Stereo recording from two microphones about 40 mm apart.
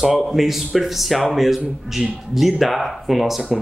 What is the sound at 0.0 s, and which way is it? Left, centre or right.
Speech, centre.